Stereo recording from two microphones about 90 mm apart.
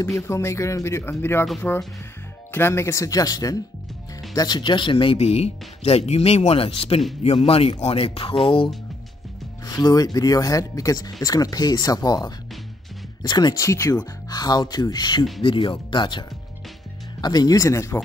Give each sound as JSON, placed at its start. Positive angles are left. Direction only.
{"t": 0.0, "sound": "speech", "side_deg": 35}
{"t": 2.5, "sound": "speech", "side_deg": 25}
{"t": 5.9, "sound": "speech", "side_deg": 90}
{"t": 9.7, "sound": "speech", "side_deg": 45}
{"t": 13.6, "sound": "speech", "side_deg": 35}
{"t": 14.3, "sound": "speech", "side_deg": 50}
{"t": 15.4, "sound": "speech", "side_deg": 70}
{"t": 17.2, "sound": "speech", "side_deg": 45}